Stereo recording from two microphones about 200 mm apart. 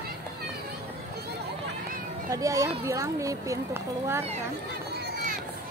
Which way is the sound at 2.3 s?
15° right (ahead or behind).